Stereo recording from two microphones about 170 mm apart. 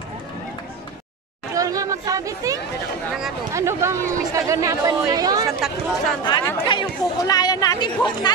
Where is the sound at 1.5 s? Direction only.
20° right (ahead or behind).